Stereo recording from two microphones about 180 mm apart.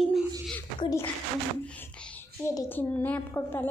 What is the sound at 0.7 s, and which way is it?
A woman's voice, 20° left (ahead or behind).